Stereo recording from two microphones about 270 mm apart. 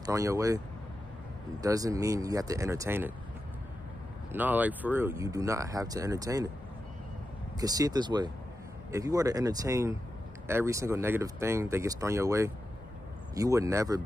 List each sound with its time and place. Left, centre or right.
0.0 s speech: centre
1.6 s speech: centre
4.3 s speech: centre
7.6 s speech: centre